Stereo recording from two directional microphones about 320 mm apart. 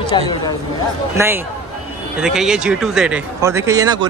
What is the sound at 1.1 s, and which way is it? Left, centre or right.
Speech, centre.